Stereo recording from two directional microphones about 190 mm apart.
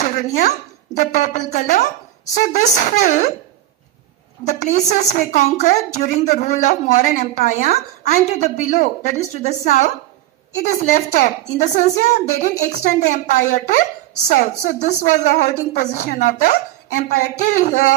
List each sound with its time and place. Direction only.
0.0 s speech: 40° left (ahead or behind)
4.5 s speech: 40° left (ahead or behind)
10.7 s speech: 40° left (ahead or behind)